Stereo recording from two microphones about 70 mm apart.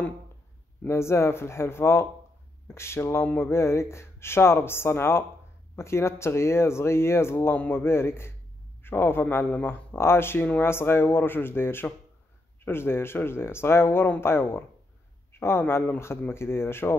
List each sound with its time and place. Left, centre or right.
0.8 s a man's voice: left